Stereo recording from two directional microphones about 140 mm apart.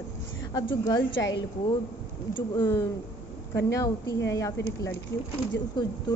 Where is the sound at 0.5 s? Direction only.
30° left (ahead or behind).